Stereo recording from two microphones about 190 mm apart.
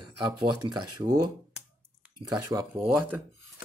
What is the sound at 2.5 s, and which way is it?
Speech, 10° right (ahead or behind).